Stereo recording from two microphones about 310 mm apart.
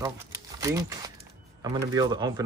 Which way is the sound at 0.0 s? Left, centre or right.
Centre.